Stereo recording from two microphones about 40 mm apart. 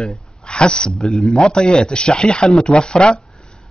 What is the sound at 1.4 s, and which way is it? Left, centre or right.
A man's voice, left.